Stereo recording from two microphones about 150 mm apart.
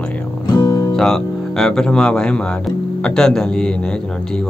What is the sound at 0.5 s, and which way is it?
Music, 30° left (ahead or behind).